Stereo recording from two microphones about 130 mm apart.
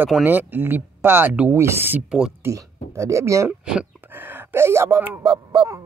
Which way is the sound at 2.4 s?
25° right (ahead or behind).